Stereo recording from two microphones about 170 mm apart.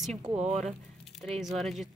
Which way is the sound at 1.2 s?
Centre (ahead or behind).